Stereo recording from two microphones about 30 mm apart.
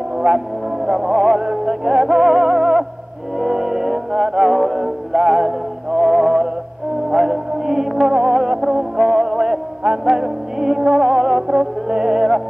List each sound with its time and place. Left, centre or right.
0.2 s music: centre
0.8 s music: centre